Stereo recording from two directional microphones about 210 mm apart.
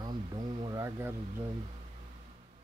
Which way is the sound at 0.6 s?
20° right (ahead or behind).